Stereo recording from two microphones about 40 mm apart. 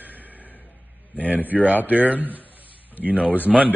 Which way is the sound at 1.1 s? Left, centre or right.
Right.